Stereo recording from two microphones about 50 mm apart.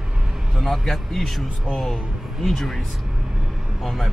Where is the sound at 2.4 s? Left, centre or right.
Centre.